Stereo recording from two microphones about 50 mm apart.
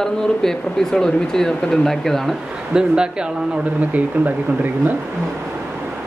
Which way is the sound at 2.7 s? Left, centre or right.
Centre.